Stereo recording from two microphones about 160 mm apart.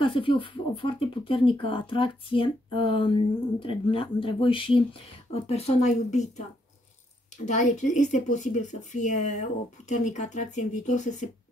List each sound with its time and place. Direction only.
0.0 s speech: 35° left (ahead or behind)
7.4 s speech: 50° left (ahead or behind)